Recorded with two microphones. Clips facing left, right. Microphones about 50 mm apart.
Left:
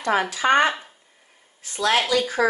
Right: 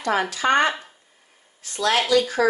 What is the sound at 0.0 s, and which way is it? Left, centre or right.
Speech, centre.